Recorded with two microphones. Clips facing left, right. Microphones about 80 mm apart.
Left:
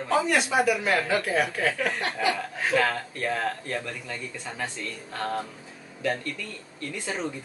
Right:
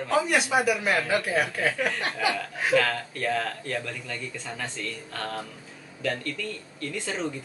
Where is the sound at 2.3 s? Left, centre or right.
Centre.